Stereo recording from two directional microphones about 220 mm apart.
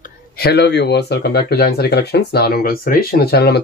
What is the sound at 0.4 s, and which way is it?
Speech, 50° left (ahead or behind).